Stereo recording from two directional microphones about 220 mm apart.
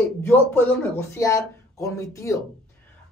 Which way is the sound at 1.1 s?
15° left (ahead or behind).